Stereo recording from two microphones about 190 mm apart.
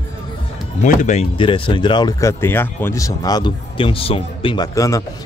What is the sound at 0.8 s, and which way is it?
Speech, 40° left (ahead or behind).